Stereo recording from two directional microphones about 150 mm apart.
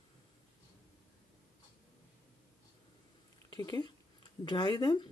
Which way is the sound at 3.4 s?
25° left (ahead or behind).